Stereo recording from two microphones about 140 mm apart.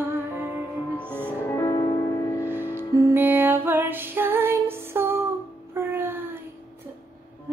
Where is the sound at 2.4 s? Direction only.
15° right (ahead or behind).